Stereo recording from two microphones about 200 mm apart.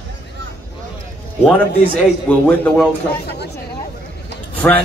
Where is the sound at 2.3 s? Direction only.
5° left (ahead or behind).